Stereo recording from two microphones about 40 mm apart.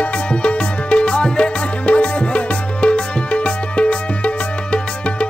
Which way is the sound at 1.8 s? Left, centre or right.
Left.